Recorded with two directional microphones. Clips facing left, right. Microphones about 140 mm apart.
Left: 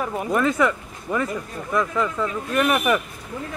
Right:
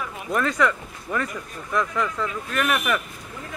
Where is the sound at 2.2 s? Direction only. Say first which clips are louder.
Left 4 dB; 20° left (ahead or behind).